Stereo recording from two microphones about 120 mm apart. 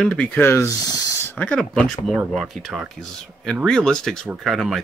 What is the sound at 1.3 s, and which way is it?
Speech, 10° left (ahead or behind).